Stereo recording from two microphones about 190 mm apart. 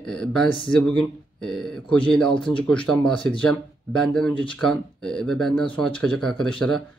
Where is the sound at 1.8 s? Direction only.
25° left (ahead or behind).